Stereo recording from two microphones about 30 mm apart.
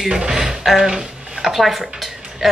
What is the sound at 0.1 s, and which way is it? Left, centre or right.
Speech, centre.